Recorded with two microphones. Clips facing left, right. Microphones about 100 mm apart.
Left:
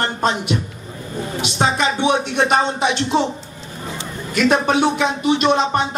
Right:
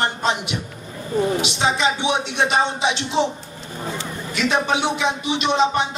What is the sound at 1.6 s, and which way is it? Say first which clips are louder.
A man's voice: left 4 dB; 50° left (ahead or behind).